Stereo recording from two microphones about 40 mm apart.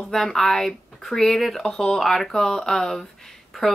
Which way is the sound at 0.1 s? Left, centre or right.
Centre.